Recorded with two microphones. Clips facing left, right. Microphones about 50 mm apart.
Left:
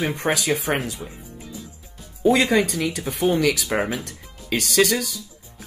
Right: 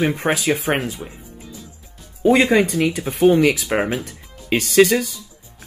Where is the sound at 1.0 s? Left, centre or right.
Right.